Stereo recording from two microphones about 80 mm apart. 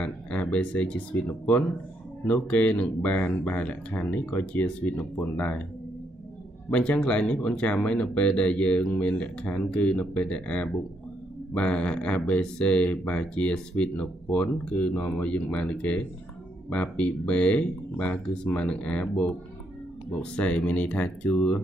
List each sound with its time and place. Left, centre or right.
0.0 s speech: centre
6.7 s speech: centre